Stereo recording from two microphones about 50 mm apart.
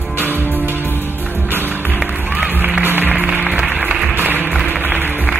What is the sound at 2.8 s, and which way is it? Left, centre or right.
Music, right.